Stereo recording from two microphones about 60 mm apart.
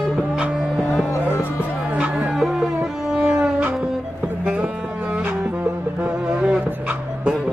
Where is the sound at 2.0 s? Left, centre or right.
Centre.